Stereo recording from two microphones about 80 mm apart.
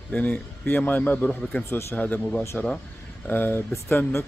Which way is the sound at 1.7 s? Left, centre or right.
Left.